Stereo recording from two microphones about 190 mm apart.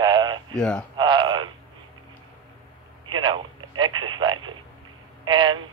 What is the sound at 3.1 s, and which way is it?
Speech, 25° right (ahead or behind).